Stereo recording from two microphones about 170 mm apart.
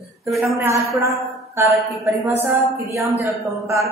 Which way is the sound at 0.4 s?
15° right (ahead or behind).